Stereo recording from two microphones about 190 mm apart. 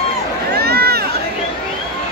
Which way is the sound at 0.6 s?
55° right (ahead or behind).